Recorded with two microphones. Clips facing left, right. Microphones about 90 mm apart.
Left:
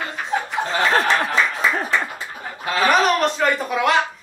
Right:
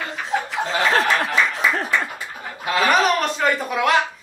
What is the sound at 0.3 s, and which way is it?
Chuckle, 40° left (ahead or behind).